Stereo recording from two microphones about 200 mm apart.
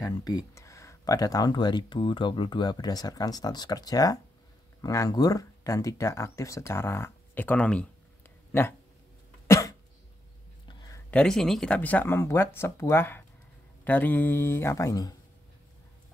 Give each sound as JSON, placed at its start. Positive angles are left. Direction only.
{"t": 0.0, "sound": "speech", "side_deg": 20}
{"t": 9.5, "sound": "cough", "side_deg": 15}
{"t": 10.7, "sound": "a sound", "side_deg": 20}
{"t": 11.1, "sound": "speech", "side_deg": 5}